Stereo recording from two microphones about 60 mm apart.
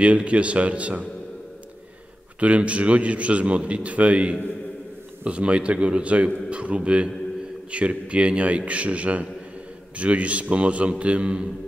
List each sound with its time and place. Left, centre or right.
0.0 s a man's voice: right
2.4 s a man's voice: right